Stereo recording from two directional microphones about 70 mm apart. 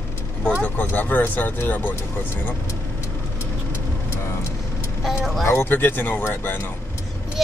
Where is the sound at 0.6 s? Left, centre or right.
Left.